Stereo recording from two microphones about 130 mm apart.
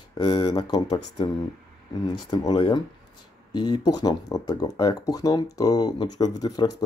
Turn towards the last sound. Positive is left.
turn(degrees=30)  # may be behind; listen again after turning